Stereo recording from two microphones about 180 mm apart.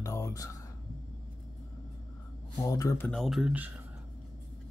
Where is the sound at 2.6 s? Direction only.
20° left (ahead or behind).